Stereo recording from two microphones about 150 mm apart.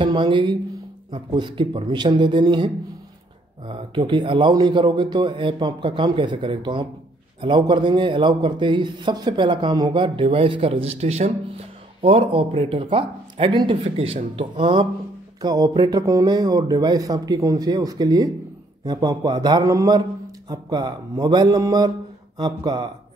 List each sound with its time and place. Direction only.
0.0 s a man's voice: 35° right (ahead or behind)